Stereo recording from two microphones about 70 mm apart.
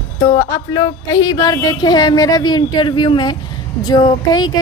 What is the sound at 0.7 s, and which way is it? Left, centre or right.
Speech, left.